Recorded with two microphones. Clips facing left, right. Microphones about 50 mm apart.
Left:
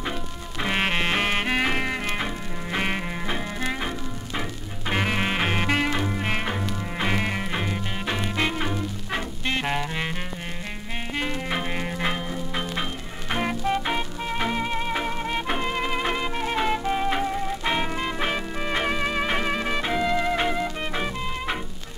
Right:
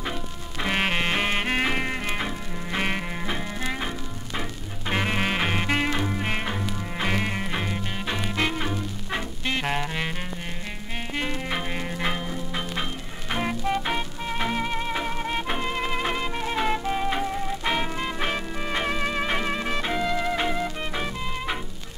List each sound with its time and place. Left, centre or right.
0.6 s music: centre
11.1 s music: centre